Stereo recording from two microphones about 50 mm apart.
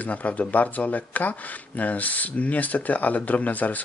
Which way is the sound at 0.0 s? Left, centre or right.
Left.